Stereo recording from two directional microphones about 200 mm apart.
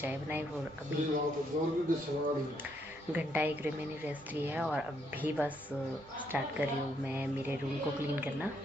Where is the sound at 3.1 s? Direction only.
10° right (ahead or behind).